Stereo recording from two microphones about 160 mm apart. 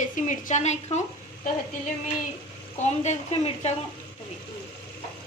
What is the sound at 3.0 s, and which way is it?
Speech, 40° left (ahead or behind).